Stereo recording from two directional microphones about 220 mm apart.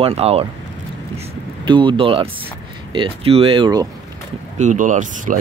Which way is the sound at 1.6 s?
20° right (ahead or behind).